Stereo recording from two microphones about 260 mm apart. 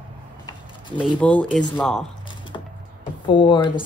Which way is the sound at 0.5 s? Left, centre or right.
Centre.